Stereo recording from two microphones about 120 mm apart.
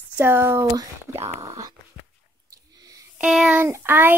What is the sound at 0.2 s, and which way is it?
Speech, 20° right (ahead or behind).